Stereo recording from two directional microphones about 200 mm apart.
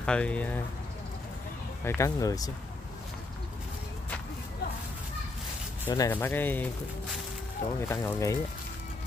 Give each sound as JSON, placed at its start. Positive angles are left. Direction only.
{"t": 0.0, "sound": "speech", "side_deg": 5}
{"t": 1.9, "sound": "speech", "side_deg": 15}
{"t": 5.9, "sound": "speech", "side_deg": 15}